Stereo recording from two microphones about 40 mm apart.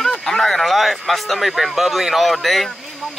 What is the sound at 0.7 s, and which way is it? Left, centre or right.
Speech, centre.